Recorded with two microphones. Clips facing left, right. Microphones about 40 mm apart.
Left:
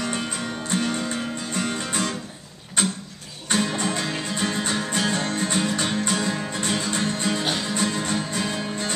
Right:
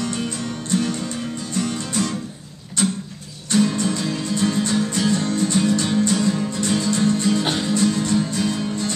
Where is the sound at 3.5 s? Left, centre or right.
Left.